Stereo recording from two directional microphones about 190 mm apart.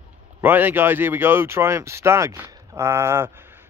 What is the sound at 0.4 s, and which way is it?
Speech, 10° right (ahead or behind).